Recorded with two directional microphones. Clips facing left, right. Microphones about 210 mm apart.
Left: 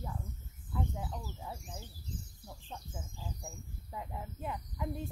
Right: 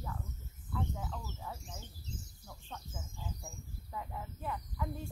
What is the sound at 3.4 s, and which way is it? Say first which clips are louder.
Speech: left 2 dB; 20° left (ahead or behind).